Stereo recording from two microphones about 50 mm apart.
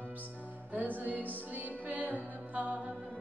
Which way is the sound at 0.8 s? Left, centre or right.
Right.